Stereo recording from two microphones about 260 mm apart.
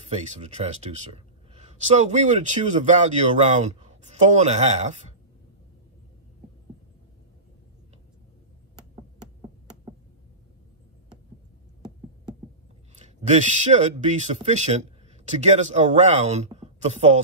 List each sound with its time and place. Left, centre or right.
0.0 s speech: right
12.9 s speech: right